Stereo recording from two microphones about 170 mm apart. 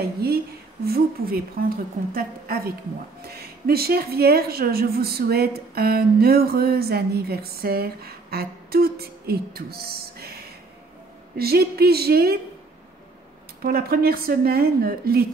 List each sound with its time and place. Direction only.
0.0 s a woman's voice: 65° right (ahead or behind)
13.6 s a woman's voice: 60° right (ahead or behind)